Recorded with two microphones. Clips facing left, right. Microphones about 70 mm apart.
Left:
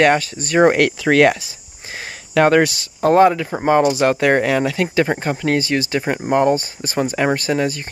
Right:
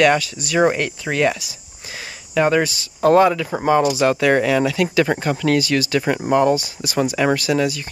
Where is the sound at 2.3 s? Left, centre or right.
Left.